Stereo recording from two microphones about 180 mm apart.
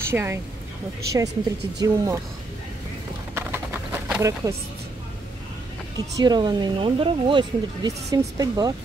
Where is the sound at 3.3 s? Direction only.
10° right (ahead or behind).